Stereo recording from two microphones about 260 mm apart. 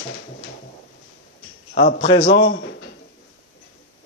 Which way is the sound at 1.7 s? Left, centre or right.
Left.